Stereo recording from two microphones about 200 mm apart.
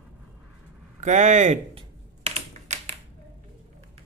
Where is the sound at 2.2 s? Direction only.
35° right (ahead or behind).